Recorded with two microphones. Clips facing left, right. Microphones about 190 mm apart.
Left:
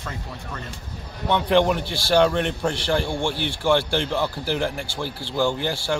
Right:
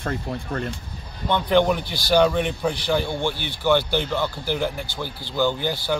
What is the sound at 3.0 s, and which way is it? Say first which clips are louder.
Speech: even; 30° left (ahead or behind).